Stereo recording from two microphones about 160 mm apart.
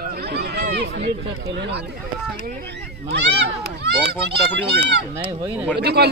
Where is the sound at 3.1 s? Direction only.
90° right.